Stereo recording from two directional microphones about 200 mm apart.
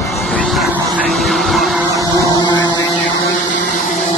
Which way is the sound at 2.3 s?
20° left (ahead or behind).